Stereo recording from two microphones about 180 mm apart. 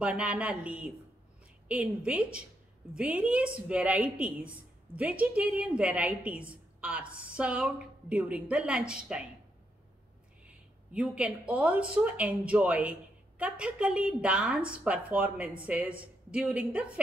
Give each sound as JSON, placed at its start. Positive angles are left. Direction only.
{"t": 0.0, "sound": "a woman's voice", "side_deg": -5}
{"t": 10.4, "sound": "a woman's voice", "side_deg": -5}